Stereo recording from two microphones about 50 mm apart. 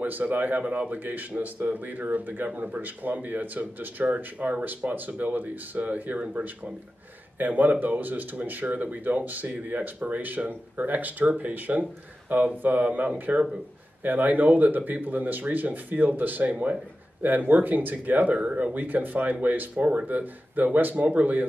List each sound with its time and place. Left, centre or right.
0.0 s a man's voice: right
16.4 s speech: right
17.2 s a man's voice: right